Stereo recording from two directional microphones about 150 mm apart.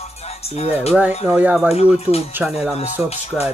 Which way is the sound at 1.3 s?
10° right (ahead or behind).